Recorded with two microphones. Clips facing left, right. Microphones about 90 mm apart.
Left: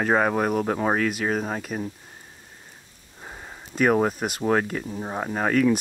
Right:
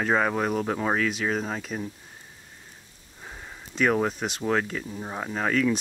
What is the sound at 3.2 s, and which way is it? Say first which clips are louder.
Sniff: left 2 dB; 15° left (ahead or behind).